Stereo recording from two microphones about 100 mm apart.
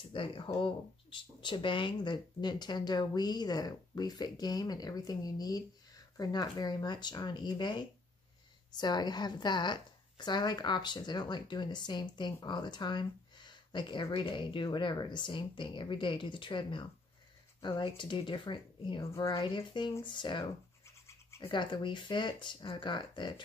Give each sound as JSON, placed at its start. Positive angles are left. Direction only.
{"t": 0.1, "sound": "a woman's voice", "side_deg": 60}